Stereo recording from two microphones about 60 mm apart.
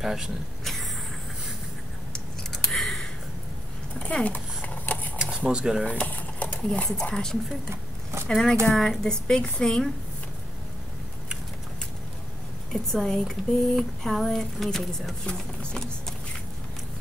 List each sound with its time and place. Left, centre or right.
0.0 s speech: centre
2.1 s scissors: centre
4.0 s speech: left
4.6 s a sound: left
5.2 s speech: centre
5.9 s sewing machine: left
7.1 s speech: centre
12.7 s speech: centre